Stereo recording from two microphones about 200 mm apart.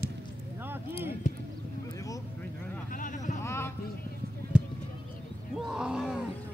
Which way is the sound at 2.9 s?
40° left (ahead or behind).